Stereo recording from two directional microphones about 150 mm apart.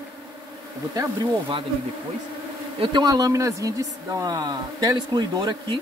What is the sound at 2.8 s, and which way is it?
Speech, 30° right (ahead or behind).